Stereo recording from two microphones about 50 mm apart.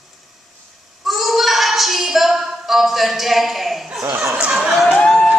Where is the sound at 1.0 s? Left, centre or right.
Centre.